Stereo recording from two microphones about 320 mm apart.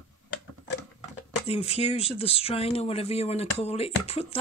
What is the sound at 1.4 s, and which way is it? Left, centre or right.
Speech, centre.